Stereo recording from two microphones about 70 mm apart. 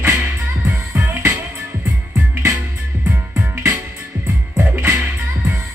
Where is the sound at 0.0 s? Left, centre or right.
Right.